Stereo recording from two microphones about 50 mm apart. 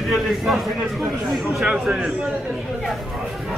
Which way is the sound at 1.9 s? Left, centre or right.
Right.